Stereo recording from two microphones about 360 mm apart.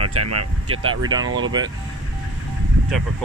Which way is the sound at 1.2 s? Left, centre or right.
Right.